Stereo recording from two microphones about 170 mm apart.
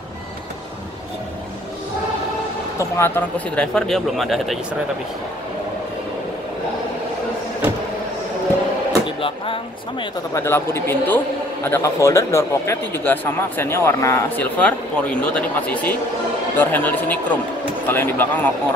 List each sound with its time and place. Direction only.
2.8 s speech: 10° left (ahead or behind)
9.0 s speech: 30° left (ahead or behind)
10.3 s speech: 15° left (ahead or behind)